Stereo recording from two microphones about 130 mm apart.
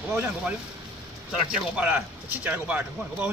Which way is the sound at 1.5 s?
10° right (ahead or behind).